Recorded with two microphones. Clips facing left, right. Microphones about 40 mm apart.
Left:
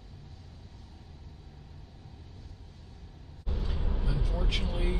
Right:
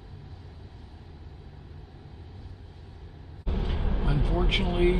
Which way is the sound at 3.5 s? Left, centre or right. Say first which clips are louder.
Right 5 dB; right.